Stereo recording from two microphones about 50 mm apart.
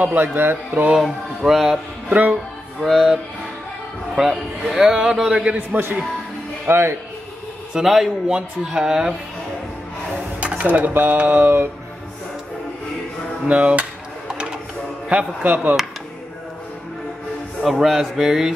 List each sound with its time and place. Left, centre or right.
0.0 s speech: right
0.7 s a man's voice: right
0.9 s speech: centre
2.0 s speech: right
2.8 s a man's voice: centre
6.7 s speech: right
7.7 s a man's voice: centre
10.6 s speech: right
13.5 s a man's voice: right
14.2 s printer: centre
15.0 s a man's voice: right
17.6 s a man's voice: centre